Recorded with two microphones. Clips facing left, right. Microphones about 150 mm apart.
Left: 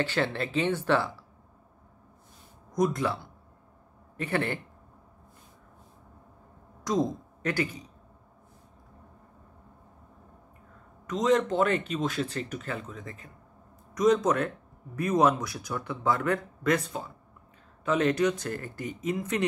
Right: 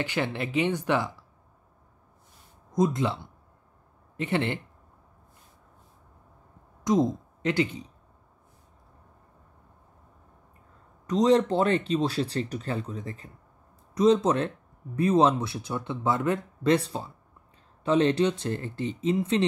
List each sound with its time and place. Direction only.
0.0 s speech: 15° right (ahead or behind)
2.7 s speech: 25° right (ahead or behind)
6.8 s speech: 20° right (ahead or behind)
11.1 s speech: 35° right (ahead or behind)